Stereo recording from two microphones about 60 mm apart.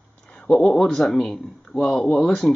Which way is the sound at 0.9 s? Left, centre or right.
Centre.